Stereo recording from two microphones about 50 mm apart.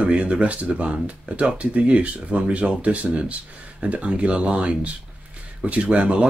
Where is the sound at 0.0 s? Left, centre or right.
Right.